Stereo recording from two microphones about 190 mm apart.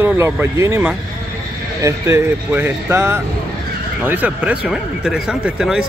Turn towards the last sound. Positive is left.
turn(degrees=-5)  # may be behind; listen again after turning